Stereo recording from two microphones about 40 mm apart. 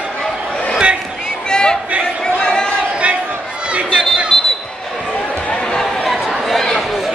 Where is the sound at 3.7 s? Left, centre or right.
Right.